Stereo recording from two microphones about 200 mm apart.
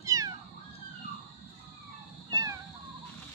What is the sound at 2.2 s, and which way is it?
Cat, 20° right (ahead or behind).